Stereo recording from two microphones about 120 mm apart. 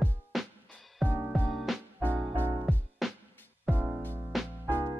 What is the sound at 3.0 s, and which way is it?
Music, centre (ahead or behind).